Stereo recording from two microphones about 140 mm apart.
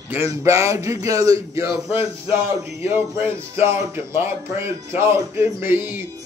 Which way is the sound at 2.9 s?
15° right (ahead or behind).